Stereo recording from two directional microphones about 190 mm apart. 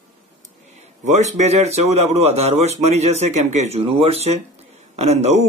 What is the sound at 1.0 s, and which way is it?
Speech, 40° right (ahead or behind).